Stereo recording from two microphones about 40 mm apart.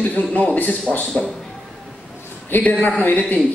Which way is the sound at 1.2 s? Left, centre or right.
Left.